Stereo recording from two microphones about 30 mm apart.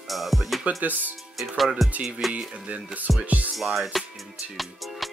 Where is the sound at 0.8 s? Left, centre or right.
Right.